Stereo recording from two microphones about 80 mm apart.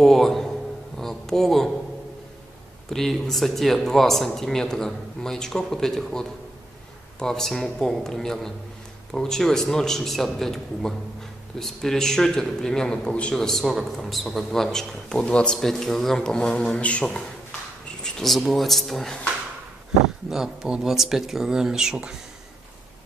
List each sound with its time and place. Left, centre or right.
0.0 s speech: centre
0.9 s a sound: centre
2.9 s a man's voice: centre
20.2 s speech: centre